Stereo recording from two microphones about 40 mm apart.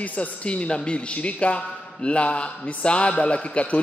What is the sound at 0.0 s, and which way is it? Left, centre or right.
A man's voice, left.